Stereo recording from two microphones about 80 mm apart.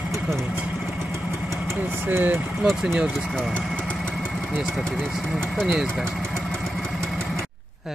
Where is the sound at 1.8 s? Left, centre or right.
Right.